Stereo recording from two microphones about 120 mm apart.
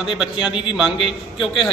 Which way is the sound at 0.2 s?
5° right (ahead or behind).